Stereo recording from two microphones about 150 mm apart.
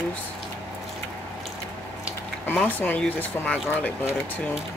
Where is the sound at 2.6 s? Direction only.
10° left (ahead or behind).